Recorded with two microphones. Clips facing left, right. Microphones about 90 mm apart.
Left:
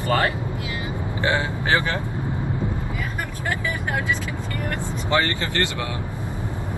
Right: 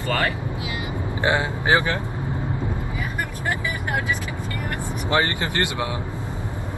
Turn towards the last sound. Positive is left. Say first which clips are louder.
# right 1 dB
turn(degrees=-20)  # may be behind; listen again after turning